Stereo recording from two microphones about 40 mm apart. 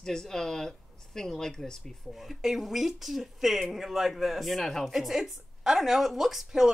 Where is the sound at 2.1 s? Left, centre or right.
Centre.